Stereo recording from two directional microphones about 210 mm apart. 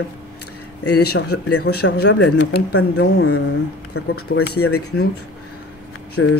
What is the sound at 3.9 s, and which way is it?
Speech, 90° left.